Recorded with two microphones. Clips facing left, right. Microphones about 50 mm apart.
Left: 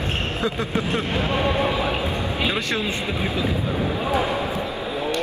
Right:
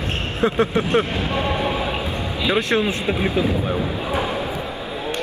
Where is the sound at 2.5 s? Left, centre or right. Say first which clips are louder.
Right 5 dB; right.